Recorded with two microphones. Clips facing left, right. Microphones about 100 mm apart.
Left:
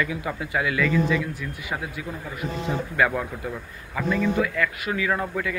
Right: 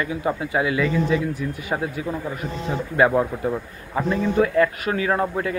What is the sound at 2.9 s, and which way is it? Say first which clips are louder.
A man's voice: right 7 dB; 30° right (ahead or behind).